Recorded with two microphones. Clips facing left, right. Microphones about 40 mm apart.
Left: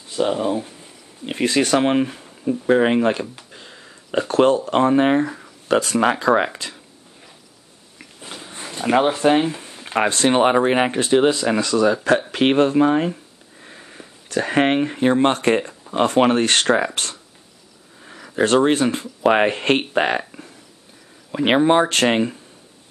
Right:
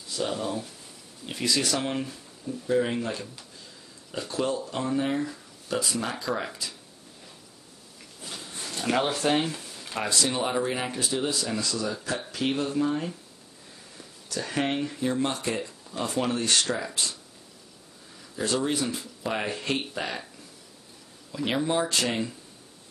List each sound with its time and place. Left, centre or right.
0.0 s speech: left
3.5 s a sound: left
4.2 s speech: left
8.0 s speech: left